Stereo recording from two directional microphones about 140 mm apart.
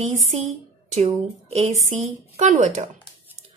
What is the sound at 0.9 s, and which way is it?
A woman's voice, 50° right (ahead or behind).